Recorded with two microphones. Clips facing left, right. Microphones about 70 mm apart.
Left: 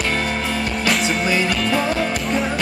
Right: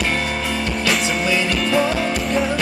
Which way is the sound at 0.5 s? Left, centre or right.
Centre.